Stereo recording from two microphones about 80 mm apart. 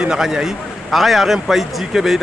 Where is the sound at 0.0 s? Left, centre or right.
Centre.